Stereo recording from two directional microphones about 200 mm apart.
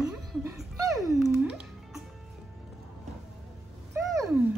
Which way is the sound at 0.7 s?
15° right (ahead or behind).